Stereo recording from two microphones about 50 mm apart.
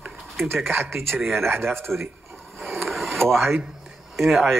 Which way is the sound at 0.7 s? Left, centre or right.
Right.